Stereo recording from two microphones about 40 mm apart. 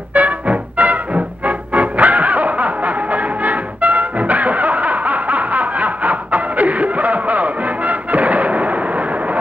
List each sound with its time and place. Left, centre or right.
0.1 s music: right